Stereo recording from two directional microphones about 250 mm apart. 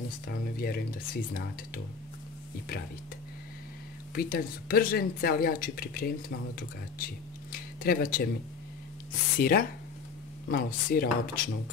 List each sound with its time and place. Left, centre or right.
0.6 s speech: left
4.1 s speech: left
9.4 s speech: left